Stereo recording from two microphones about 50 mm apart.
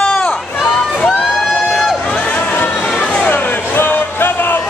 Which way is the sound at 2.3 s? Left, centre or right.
Left.